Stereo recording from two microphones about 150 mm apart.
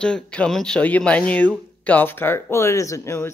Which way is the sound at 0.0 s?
5° left (ahead or behind).